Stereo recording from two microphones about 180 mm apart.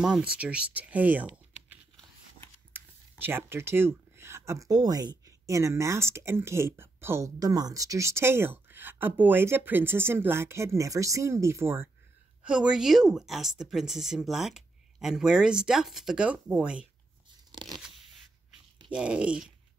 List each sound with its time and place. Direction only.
0.0 s speech: 5° right (ahead or behind)
17.5 s crunch: 25° right (ahead or behind)
18.9 s speech: 5° right (ahead or behind)